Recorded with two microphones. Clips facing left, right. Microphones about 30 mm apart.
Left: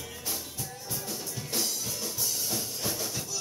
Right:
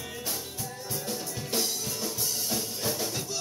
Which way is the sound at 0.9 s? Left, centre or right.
Centre.